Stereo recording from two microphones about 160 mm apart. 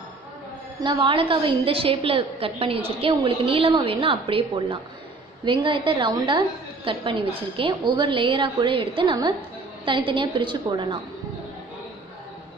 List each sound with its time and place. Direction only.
0.7 s a woman's voice: 30° right (ahead or behind)